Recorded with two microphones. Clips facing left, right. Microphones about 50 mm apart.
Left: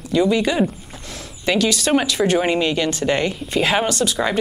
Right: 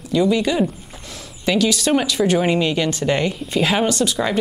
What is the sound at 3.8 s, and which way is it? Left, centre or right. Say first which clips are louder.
Speech: right 1 dB; centre.